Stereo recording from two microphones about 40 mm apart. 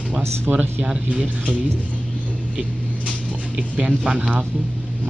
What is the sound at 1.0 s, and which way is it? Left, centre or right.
Speech, right.